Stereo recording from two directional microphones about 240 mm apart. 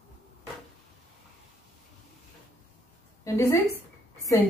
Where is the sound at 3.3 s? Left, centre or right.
Centre.